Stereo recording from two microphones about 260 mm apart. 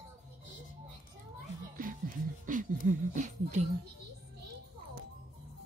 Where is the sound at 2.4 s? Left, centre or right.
Right.